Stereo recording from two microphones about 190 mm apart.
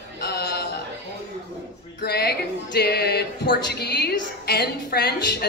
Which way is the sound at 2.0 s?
55° left (ahead or behind).